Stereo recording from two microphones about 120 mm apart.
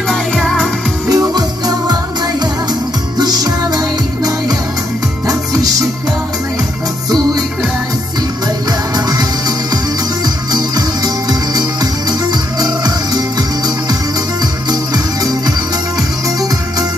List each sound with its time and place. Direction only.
0.1 s music: centre (ahead or behind)
1.0 s music: 30° right (ahead or behind)
3.2 s music: 35° right (ahead or behind)
8.9 s music: 30° right (ahead or behind)